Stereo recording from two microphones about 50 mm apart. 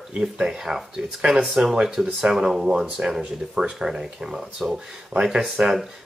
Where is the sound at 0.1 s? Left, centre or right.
Centre.